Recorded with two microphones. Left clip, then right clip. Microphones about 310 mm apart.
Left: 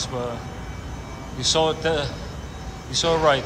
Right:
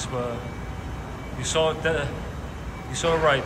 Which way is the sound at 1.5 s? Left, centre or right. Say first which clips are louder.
Even; centre.